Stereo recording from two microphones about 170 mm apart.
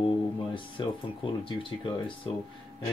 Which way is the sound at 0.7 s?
30° left (ahead or behind).